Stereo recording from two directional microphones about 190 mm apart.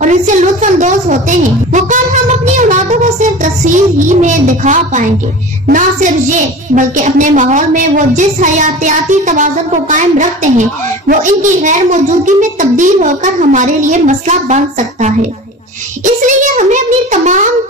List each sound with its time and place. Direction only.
0.0 s a sound: 40° right (ahead or behind)
5.7 s a woman's voice: 40° right (ahead or behind)
16.3 s a woman's voice: 40° right (ahead or behind)